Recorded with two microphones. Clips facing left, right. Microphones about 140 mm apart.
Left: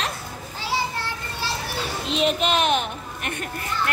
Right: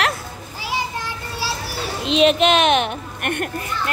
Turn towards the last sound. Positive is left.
turn(degrees=-60)  # may be behind; listen again after turning